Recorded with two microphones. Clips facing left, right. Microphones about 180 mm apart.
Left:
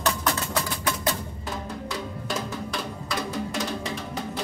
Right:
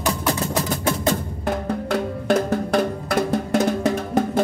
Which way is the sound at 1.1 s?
60° right (ahead or behind).